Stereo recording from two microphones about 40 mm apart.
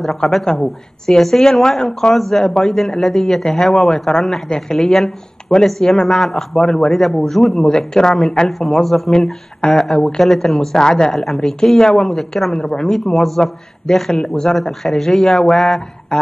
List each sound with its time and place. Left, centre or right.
0.0 s speech: centre
6.9 s speech: centre
7.5 s speech: centre
11.1 s speech: centre
12.5 s speech: centre
16.1 s a sound: left